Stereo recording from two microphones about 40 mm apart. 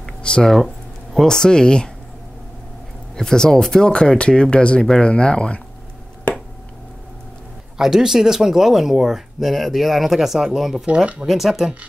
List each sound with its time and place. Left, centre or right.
0.3 s speech: left
1.2 s speech: centre
3.2 s speech: centre
7.7 s speech: centre